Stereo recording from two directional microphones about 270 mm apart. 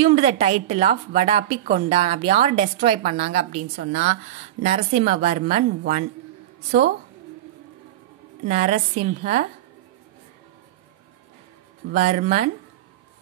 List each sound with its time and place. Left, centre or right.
0.0 s a woman's voice: right
8.5 s a woman's voice: right
11.9 s a woman's voice: right